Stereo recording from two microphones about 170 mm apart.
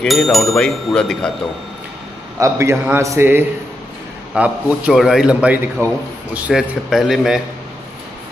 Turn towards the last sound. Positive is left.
turn(degrees=-5)  # may be behind; listen again after turning